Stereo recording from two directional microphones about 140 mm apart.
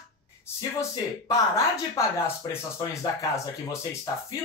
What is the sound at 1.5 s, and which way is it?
Speech, 25° left (ahead or behind).